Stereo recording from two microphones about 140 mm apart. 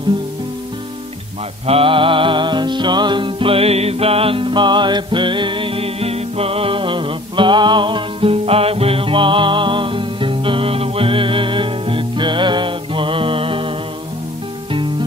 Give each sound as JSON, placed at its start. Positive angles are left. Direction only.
{"t": 1.7, "sound": "music", "side_deg": -40}